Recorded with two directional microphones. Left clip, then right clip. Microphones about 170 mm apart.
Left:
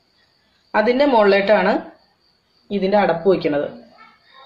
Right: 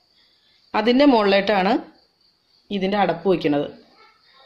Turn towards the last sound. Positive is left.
turn(degrees=-55)  # may be behind; listen again after turning